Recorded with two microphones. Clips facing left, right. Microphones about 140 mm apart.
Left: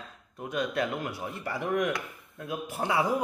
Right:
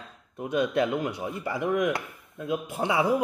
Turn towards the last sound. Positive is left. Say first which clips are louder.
# right 3 dB
turn(degrees=-15)  # may be behind; listen again after turning